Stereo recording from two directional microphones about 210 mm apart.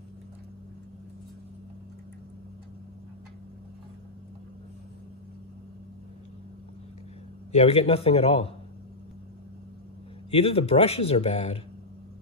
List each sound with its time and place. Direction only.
7.5 s speech: 30° left (ahead or behind)
10.3 s speech: 30° left (ahead or behind)